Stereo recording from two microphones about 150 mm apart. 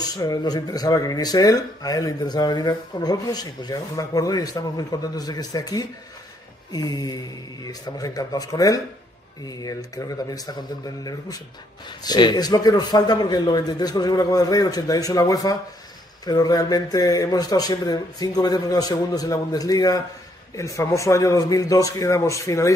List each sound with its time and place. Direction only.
0.0 s speech: 25° left (ahead or behind)
12.0 s speech: 30° left (ahead or behind)